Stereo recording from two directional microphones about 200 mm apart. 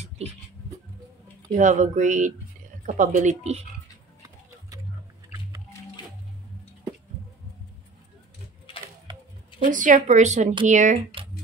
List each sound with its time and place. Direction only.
1.5 s speech: 40° right (ahead or behind)
9.1 s music: 25° right (ahead or behind)
9.7 s speech: 40° right (ahead or behind)